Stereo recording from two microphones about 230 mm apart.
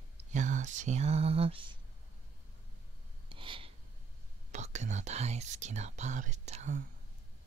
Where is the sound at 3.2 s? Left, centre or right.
Right.